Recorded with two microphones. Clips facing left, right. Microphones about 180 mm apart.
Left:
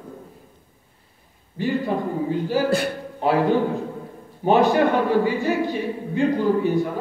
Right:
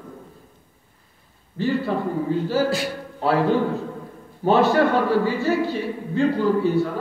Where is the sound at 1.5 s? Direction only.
15° left (ahead or behind).